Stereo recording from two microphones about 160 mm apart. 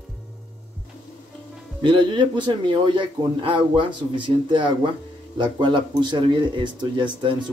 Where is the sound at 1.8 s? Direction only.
30° right (ahead or behind).